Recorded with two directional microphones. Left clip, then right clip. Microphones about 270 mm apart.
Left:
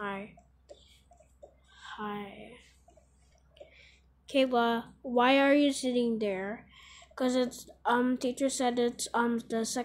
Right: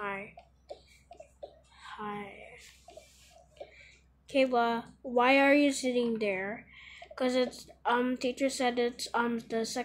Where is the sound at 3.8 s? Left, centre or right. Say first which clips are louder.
Right 2 dB; centre.